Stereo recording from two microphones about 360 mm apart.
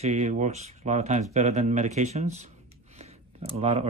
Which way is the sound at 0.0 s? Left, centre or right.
Centre.